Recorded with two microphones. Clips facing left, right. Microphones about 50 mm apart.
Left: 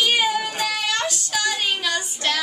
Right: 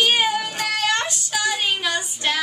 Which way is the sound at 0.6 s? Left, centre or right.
Right.